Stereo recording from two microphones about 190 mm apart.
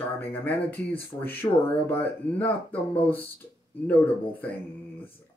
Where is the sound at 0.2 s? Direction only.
10° left (ahead or behind).